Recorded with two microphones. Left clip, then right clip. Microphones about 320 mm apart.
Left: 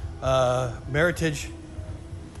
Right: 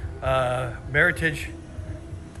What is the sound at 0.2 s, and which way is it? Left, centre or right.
Mantra, centre.